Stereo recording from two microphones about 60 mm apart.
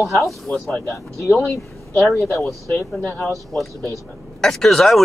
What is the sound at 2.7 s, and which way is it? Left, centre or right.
Speech, left.